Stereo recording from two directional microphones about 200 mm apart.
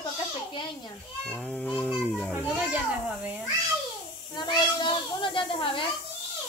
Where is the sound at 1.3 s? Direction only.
5° left (ahead or behind).